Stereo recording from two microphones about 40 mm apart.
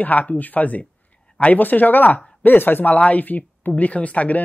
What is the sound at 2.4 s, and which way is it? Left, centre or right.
Speech, left.